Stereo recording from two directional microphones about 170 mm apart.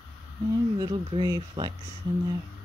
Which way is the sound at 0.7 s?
30° right (ahead or behind).